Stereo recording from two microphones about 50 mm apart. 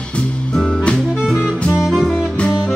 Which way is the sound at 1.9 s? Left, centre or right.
Centre.